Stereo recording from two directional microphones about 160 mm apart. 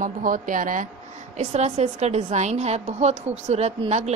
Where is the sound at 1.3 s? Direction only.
45° right (ahead or behind).